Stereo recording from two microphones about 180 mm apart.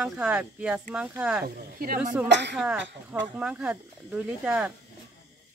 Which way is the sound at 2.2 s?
80° right.